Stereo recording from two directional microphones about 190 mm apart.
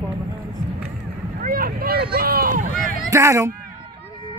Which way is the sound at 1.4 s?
50° right (ahead or behind).